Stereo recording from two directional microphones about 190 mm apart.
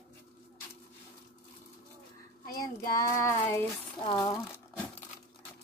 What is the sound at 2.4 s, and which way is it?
Child singing, 50° left (ahead or behind).